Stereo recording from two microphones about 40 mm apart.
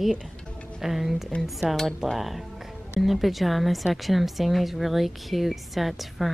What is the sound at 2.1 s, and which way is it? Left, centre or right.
A woman's voice, centre.